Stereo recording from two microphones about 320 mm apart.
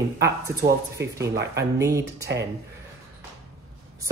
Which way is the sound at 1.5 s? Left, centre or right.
Centre.